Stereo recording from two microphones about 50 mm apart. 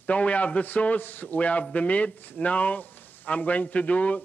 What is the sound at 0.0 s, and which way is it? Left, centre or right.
A man's voice, left.